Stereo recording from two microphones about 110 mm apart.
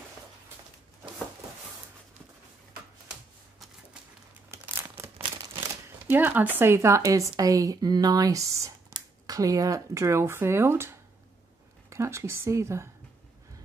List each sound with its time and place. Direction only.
3.1 s typewriter: 10° right (ahead or behind)
4.5 s crumpling: 20° right (ahead or behind)
6.0 s speech: 20° right (ahead or behind)